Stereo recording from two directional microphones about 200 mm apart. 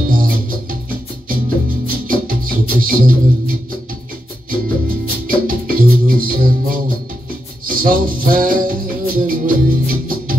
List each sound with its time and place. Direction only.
0.1 s music: 45° right (ahead or behind)
4.5 s music: 45° right (ahead or behind)